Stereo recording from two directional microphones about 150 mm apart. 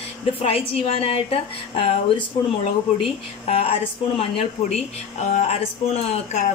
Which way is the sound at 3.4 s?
40° left (ahead or behind).